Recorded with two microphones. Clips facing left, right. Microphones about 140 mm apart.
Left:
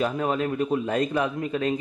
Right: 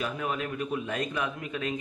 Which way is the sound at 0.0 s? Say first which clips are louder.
Left 7 dB; 35° left (ahead or behind).